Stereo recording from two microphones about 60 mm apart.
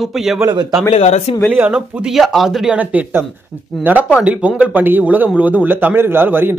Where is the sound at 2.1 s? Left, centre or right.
Centre.